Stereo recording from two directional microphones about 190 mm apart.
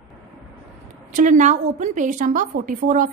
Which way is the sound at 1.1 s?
40° right (ahead or behind).